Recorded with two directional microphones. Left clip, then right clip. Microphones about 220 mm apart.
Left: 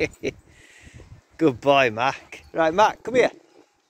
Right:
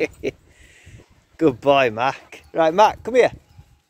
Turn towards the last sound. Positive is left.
turn(degrees=-10)  # may be behind; listen again after turning